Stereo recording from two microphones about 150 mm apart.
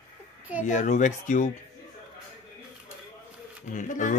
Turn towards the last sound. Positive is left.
turn(degrees=60)  # may be behind; listen again after turning